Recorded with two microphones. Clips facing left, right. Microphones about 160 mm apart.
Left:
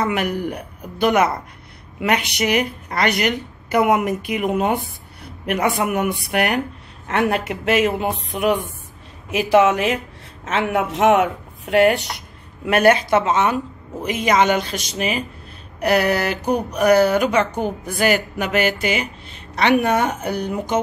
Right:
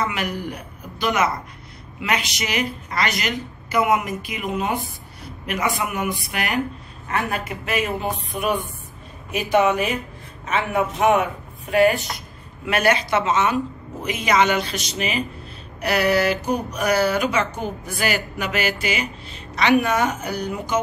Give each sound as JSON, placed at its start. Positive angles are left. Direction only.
{"t": 0.0, "sound": "a woman's voice", "side_deg": 55}
{"t": 9.3, "sound": "a man's voice", "side_deg": 90}
{"t": 11.7, "sound": "a woman's voice", "side_deg": 75}
{"t": 12.6, "sound": "a woman's voice", "side_deg": 50}